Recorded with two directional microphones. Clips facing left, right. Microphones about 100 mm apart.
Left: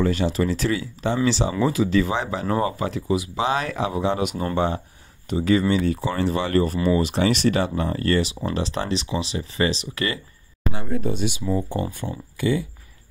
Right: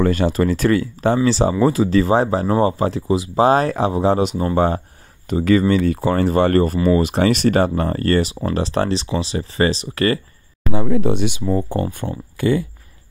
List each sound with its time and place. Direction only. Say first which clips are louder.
0.0 s speech: right 4 dB; 50° right (ahead or behind); by 4.5 s 30° right (ahead or behind)
4.6 s speech: right 6 dB; 45° right (ahead or behind)
11.0 s speech: right 6 dB; 75° right (ahead or behind)
12.0 s speech: right 4 dB; 50° right (ahead or behind)